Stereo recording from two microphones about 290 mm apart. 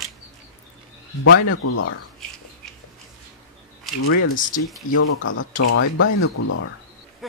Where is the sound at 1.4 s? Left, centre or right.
Left.